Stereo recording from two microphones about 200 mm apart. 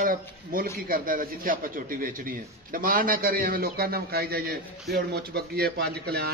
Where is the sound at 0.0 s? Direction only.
45° right (ahead or behind).